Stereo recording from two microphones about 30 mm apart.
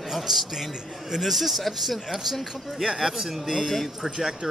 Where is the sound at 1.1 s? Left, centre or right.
Centre.